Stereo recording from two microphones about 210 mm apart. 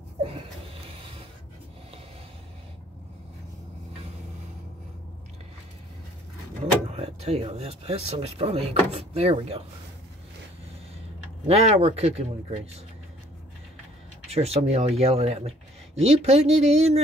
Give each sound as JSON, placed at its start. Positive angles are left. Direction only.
{"t": 6.9, "sound": "speech", "side_deg": -30}
{"t": 11.4, "sound": "a man's voice", "side_deg": -30}
{"t": 14.3, "sound": "a man's voice", "side_deg": -30}